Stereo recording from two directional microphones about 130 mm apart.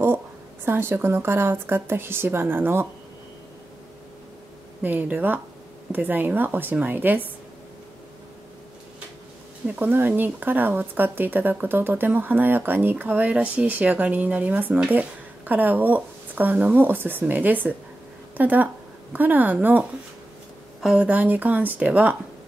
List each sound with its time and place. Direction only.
0.7 s speech: 15° right (ahead or behind)
4.8 s speech: 15° right (ahead or behind)
9.7 s speech: 15° right (ahead or behind)